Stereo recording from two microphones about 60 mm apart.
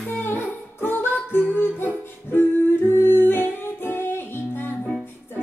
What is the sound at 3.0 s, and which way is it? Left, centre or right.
Humming, left.